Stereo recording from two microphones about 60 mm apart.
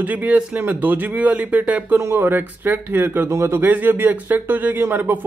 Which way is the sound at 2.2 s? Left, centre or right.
Right.